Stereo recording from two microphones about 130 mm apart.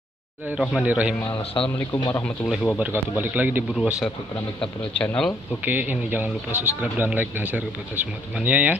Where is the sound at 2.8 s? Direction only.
15° right (ahead or behind).